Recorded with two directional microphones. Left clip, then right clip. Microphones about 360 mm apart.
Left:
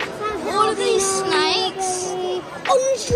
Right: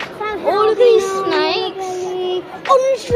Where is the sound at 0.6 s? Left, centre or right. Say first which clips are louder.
Right 7 dB; centre.